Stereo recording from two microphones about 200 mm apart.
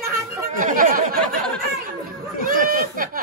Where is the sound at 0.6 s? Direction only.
40° right (ahead or behind).